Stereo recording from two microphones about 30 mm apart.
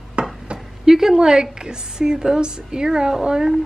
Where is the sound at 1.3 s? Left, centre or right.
Right.